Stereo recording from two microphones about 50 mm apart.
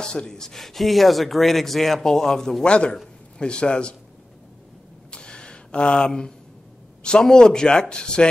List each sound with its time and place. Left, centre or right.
0.0 s speech: centre
2.7 s a man's voice: left
5.1 s a sound: centre
7.2 s speech: centre